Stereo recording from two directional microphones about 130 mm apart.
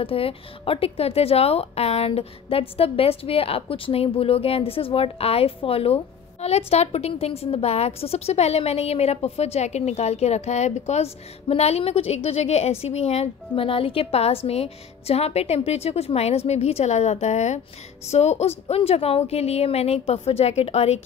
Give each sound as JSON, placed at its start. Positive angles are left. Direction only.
{"t": 0.0, "sound": "a woman's voice", "side_deg": 45}